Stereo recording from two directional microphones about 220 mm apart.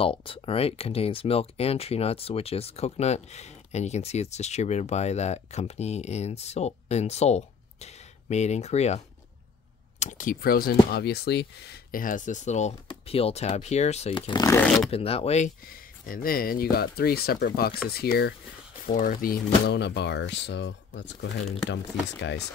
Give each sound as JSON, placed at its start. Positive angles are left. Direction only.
{"t": 0.0, "sound": "speech", "side_deg": 25}
{"t": 14.9, "sound": "speech", "side_deg": 25}